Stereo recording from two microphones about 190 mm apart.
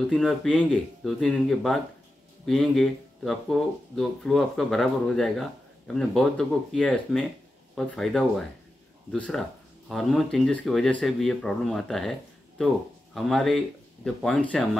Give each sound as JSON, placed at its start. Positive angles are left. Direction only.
{"t": 0.1, "sound": "speech", "side_deg": 0}